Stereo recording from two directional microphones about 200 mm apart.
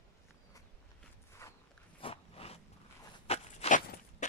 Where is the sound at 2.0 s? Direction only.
30° left (ahead or behind).